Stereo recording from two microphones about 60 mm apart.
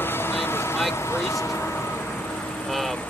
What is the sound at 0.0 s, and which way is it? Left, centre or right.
Vehicle, left.